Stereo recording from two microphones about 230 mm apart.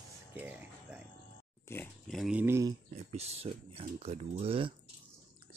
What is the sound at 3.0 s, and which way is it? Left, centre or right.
Speech, right.